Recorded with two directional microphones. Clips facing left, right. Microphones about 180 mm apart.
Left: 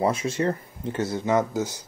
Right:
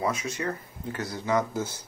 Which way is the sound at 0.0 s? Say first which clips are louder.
Left 6 dB; 30° left (ahead or behind).